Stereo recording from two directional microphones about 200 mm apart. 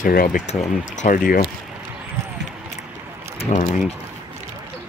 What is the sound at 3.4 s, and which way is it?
Speech, 35° left (ahead or behind).